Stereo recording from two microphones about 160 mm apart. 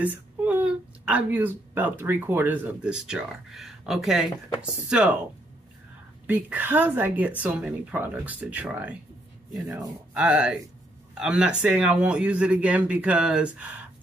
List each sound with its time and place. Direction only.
0.0 s speech: 10° right (ahead or behind)
6.2 s speech: 10° right (ahead or behind)
9.7 s speech: 25° right (ahead or behind)
10.1 s speech: 5° right (ahead or behind)